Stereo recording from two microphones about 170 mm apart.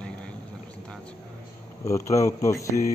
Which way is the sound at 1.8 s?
20° left (ahead or behind).